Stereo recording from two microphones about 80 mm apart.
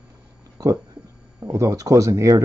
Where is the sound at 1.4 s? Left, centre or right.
Right.